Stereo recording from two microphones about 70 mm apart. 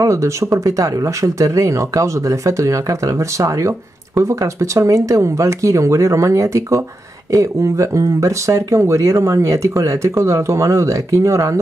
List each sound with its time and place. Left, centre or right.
0.0 s speech: right